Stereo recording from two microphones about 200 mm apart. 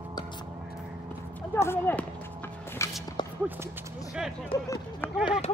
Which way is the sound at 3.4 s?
10° right (ahead or behind).